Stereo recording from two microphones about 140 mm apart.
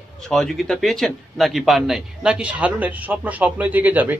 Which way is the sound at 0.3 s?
Centre (ahead or behind).